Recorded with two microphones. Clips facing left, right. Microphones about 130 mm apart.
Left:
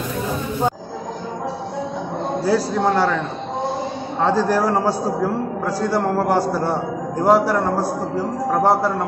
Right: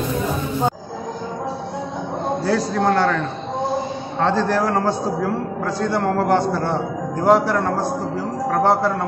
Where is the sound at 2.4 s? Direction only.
5° left (ahead or behind).